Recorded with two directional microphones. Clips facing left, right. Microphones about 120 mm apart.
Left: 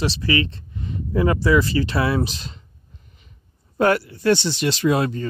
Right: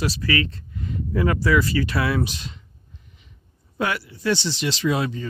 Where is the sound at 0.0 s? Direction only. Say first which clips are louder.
Left 2 dB; 25° left (ahead or behind).